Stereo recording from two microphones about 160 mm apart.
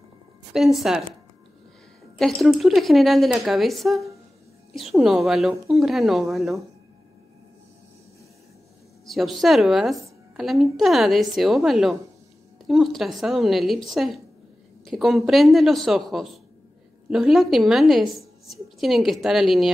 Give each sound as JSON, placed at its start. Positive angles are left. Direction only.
{"t": 0.5, "sound": "a woman's voice", "side_deg": 0}
{"t": 2.4, "sound": "a woman's voice", "side_deg": 0}
{"t": 9.0, "sound": "a woman's voice", "side_deg": 0}